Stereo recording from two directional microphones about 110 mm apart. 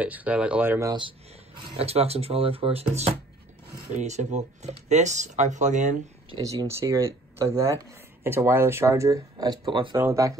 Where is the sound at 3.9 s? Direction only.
90° right.